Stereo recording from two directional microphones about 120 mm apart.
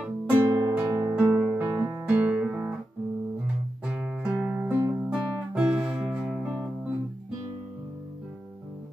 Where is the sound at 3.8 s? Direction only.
5° right (ahead or behind).